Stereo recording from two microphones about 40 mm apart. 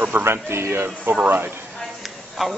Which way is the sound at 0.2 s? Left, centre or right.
Right.